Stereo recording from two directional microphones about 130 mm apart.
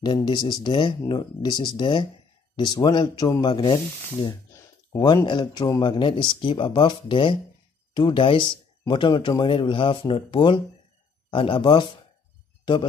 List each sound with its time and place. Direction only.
0.0 s speech: 35° left (ahead or behind)